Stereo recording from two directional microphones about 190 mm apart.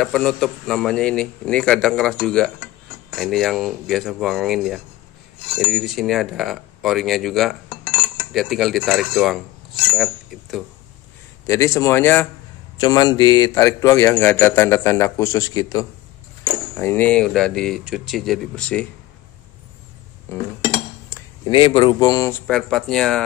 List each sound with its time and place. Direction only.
0.0 s a man's voice: 5° left (ahead or behind)
11.4 s speech: 15° left (ahead or behind)
12.8 s a man's voice: 20° left (ahead or behind); by 18.9 s 5° left (ahead or behind)
20.3 s speech: 15° left (ahead or behind)
21.5 s speech: 25° left (ahead or behind)
22.5 s a man's voice: centre (ahead or behind)